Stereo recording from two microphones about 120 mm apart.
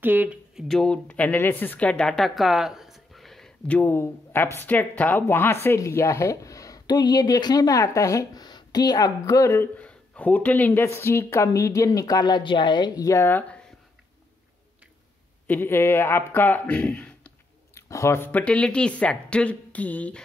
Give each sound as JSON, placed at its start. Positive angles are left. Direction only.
{"t": 0.0, "sound": "speech", "side_deg": -15}
{"t": 0.6, "sound": "a woman's voice", "side_deg": 5}
{"t": 15.4, "sound": "speech", "side_deg": 15}
{"t": 17.7, "sound": "speech", "side_deg": 25}